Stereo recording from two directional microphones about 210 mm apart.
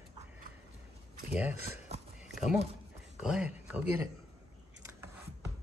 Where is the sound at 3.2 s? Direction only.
5° right (ahead or behind).